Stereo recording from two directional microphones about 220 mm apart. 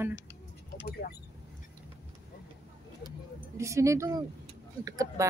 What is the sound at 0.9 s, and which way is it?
Speech, 45° left (ahead or behind).